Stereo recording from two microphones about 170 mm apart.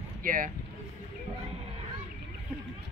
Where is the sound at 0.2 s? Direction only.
55° right (ahead or behind).